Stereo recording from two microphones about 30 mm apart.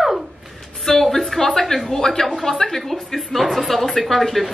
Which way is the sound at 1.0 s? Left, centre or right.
Centre.